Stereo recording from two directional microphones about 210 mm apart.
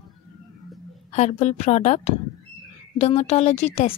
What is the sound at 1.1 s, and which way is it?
Speech, 35° left (ahead or behind).